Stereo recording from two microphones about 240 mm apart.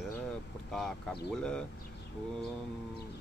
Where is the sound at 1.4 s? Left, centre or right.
Centre.